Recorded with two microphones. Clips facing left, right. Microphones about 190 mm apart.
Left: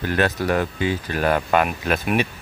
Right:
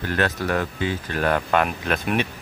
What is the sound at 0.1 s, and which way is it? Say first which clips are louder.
Speech: left 2 dB; 15° left (ahead or behind).